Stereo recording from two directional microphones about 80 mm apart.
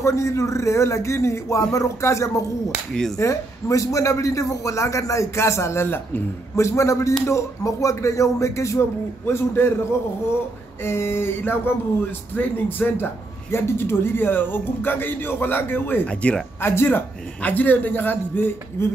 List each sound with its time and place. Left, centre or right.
0.0 s a man's voice: left
10.8 s a man's voice: left
16.1 s speech: centre
16.6 s a man's voice: left